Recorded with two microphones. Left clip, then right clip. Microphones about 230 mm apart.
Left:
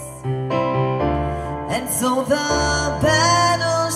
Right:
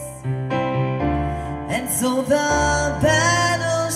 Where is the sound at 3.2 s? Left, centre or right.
Centre.